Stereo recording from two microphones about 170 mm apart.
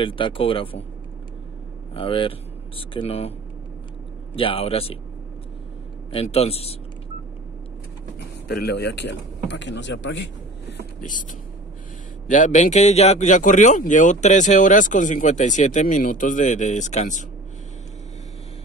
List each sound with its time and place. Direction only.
0.0 s speech: 30° left (ahead or behind)
2.0 s speech: 30° left (ahead or behind)
4.4 s speech: 35° left (ahead or behind)
6.1 s speech: 35° left (ahead or behind)
8.5 s speech: 70° left (ahead or behind); by 10.3 s 90° left
11.0 s speech: 50° left (ahead or behind)
12.3 s speech: 45° left (ahead or behind)